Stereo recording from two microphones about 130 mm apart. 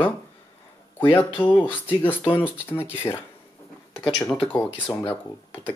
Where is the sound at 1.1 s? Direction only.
15° left (ahead or behind).